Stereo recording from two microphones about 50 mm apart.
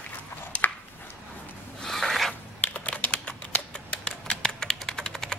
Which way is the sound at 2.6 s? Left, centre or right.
Left.